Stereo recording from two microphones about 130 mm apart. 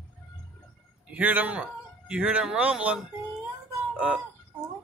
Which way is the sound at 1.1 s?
15° right (ahead or behind).